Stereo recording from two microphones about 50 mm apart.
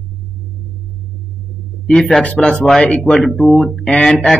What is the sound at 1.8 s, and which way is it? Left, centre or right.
Speech, centre.